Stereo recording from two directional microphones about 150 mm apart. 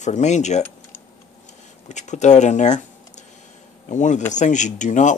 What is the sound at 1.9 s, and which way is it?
Speech, 50° left (ahead or behind).